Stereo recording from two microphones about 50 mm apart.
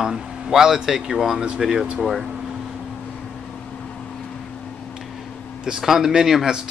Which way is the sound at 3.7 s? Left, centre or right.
Centre.